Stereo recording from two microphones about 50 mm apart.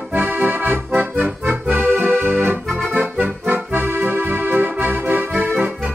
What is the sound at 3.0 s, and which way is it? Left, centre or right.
Accordion, right.